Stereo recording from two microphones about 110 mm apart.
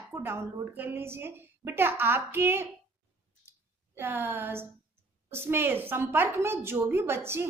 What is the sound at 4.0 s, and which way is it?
A woman's voice, 20° right (ahead or behind).